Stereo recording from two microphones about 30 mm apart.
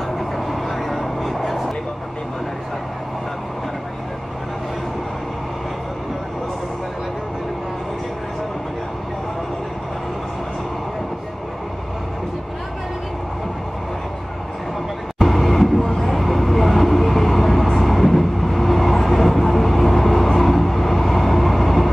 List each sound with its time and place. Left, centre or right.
0.5 s vehicle: centre
15.1 s a sound: centre
15.8 s vehicle: centre
16.2 s vehicle: centre